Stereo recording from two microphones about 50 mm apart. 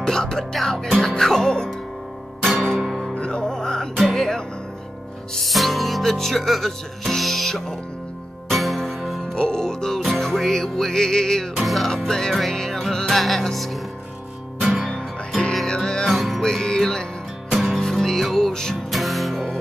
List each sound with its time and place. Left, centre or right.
0.0 s music: centre
3.2 s music: centre
5.3 s speech: centre
8.5 s music: centre
9.3 s music: centre
11.5 s speech: centre
12.4 s music: centre
14.6 s music: centre
14.9 s music: centre
16.1 s music: centre
16.4 s music: centre